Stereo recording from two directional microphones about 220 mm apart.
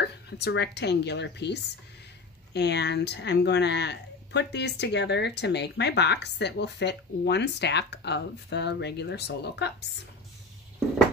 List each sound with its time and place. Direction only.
0.0 s speech: 50° left (ahead or behind)